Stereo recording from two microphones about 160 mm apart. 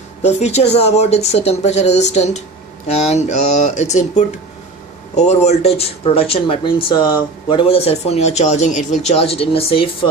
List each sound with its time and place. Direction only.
0.2 s a man's voice: 45° left (ahead or behind)